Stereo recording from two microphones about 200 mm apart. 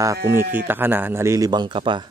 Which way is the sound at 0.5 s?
10° right (ahead or behind).